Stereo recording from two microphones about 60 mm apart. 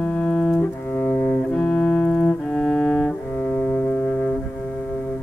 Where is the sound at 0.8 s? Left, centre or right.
Left.